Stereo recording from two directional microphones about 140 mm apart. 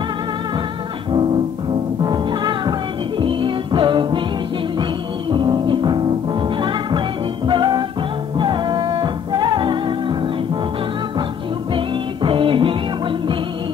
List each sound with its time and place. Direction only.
2.0 s music: 30° right (ahead or behind)
5.3 s music: 35° right (ahead or behind)
11.7 s music: 35° right (ahead or behind)